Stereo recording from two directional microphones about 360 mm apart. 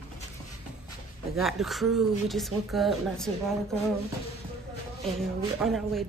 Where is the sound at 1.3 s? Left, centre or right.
Centre.